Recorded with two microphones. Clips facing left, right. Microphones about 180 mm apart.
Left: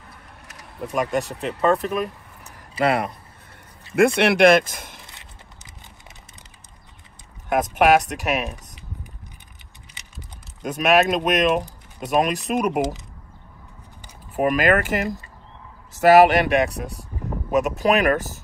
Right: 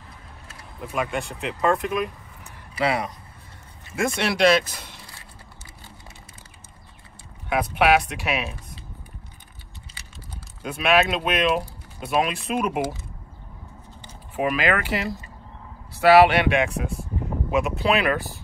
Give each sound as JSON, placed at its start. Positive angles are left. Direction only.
{"t": 0.8, "sound": "speech", "side_deg": 40}
{"t": 2.8, "sound": "speech", "side_deg": 55}
{"t": 7.4, "sound": "speech", "side_deg": 45}
{"t": 10.6, "sound": "speech", "side_deg": 40}
{"t": 14.3, "sound": "speech", "side_deg": 45}